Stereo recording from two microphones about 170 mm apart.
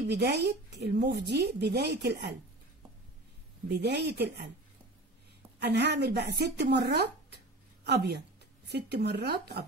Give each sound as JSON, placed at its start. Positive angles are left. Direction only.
{"t": 0.0, "sound": "speech", "side_deg": -75}
{"t": 3.6, "sound": "speech", "side_deg": -75}
{"t": 5.6, "sound": "a woman's voice", "side_deg": -80}